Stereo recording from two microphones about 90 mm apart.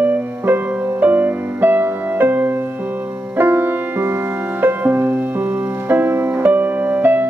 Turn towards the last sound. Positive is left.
turn(degrees=-20)  # may be behind; listen again after turning